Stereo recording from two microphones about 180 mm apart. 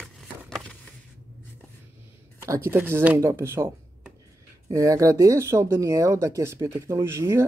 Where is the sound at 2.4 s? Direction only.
15° right (ahead or behind).